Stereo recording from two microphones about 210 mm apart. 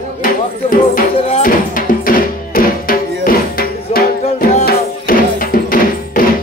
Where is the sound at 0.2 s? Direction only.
40° left (ahead or behind).